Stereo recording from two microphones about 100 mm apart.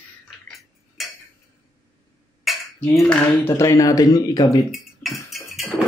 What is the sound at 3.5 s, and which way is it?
Speech, 30° left (ahead or behind).